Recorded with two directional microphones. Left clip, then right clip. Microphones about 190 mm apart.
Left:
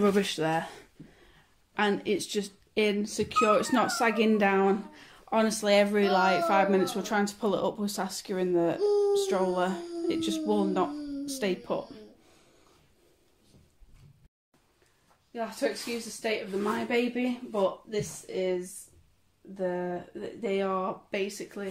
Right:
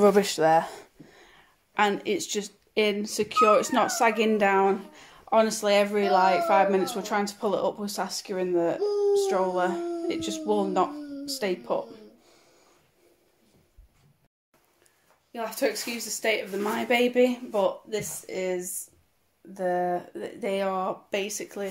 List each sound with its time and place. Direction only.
0.0 s speech: 15° right (ahead or behind)
5.9 s speech: 10° left (ahead or behind)
15.3 s speech: 45° right (ahead or behind); by 21.6 s 25° right (ahead or behind)